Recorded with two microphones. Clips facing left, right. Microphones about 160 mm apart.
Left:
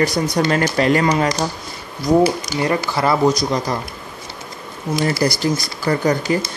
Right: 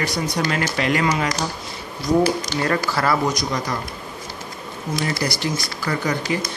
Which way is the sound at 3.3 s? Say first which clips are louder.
Left 5 dB; 30° left (ahead or behind).